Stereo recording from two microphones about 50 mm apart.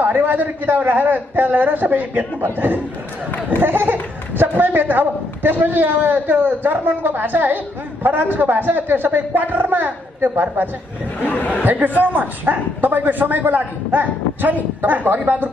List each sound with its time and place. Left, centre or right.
0.0 s speech: right